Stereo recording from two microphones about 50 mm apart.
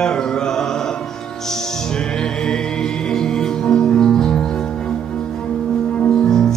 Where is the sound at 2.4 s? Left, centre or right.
Centre.